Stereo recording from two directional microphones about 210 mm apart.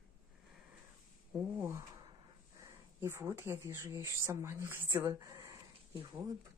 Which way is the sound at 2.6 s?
15° right (ahead or behind).